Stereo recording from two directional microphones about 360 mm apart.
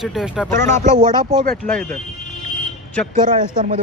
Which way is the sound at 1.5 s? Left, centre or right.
Centre.